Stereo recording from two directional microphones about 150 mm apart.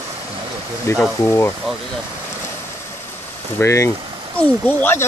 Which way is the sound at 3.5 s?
20° left (ahead or behind).